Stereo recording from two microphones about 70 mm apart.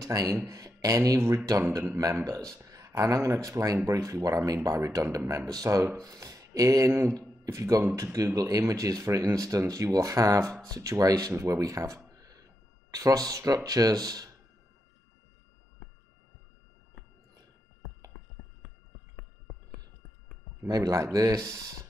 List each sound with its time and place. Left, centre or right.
0.0 s speech: right
5.5 s speech: right
7.2 s speech: right
11.3 s speech: right
12.2 s a sound: right
12.9 s speech: right
20.6 s speech: right